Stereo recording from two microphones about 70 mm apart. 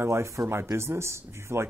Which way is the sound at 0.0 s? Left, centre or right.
Right.